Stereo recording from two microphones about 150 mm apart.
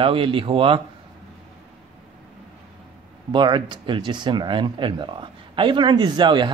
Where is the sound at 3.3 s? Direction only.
30° right (ahead or behind).